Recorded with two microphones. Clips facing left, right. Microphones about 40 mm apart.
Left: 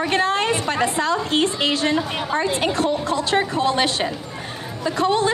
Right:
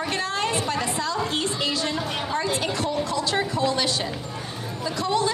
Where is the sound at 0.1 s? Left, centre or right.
Left.